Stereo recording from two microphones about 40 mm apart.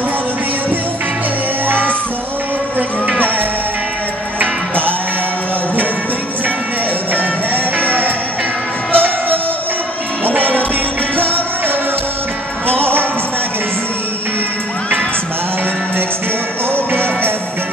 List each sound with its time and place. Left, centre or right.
4.4 s music: right
7.2 s music: right
12.6 s music: right
16.7 s music: right